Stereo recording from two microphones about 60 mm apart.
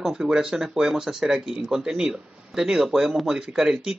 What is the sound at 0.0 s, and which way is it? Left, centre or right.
Speech, centre.